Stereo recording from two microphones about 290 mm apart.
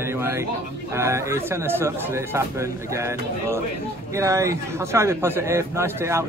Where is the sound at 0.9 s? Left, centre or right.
Centre.